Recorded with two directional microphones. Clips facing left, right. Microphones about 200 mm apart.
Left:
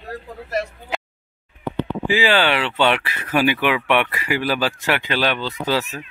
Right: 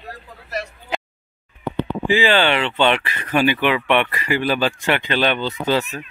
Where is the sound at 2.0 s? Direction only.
5° left (ahead or behind).